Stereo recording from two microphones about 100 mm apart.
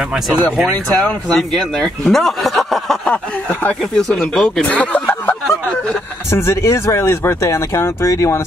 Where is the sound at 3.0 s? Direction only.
15° left (ahead or behind).